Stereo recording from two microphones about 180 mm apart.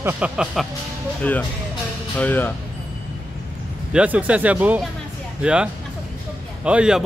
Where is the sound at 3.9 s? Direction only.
5° right (ahead or behind).